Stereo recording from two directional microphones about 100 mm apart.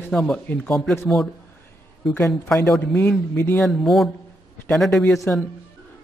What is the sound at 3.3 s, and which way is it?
Speech, 20° left (ahead or behind).